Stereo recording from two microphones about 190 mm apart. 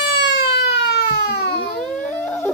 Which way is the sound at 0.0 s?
60° left (ahead or behind).